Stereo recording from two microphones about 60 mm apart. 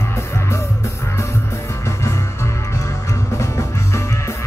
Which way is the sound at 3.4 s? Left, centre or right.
Left.